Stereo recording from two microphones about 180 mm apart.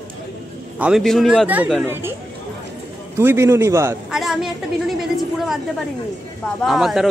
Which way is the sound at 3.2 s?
15° right (ahead or behind).